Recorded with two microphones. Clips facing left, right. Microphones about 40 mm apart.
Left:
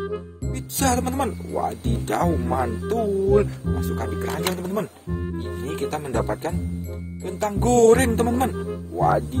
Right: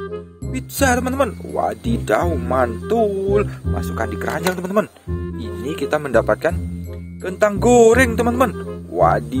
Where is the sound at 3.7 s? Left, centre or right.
Right.